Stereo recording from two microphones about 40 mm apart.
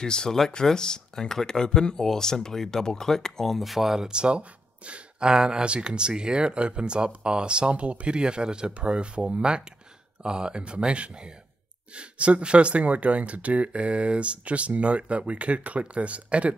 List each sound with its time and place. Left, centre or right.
0.0 s speech: centre
4.1 s speech: right